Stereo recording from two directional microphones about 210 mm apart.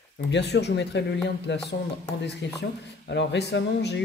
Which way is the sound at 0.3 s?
55° left (ahead or behind).